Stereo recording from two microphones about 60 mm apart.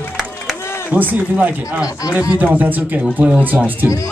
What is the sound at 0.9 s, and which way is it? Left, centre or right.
Speech, right.